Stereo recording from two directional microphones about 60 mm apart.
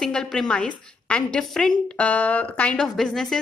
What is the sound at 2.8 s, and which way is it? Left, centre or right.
Speech, centre.